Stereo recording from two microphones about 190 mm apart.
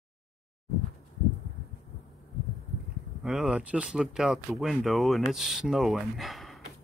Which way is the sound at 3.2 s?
Centre (ahead or behind).